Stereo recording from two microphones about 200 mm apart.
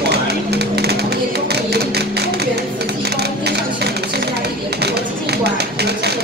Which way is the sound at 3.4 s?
55° right (ahead or behind).